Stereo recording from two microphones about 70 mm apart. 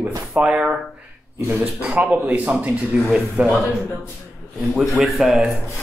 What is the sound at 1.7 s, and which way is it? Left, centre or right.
A man's voice, centre.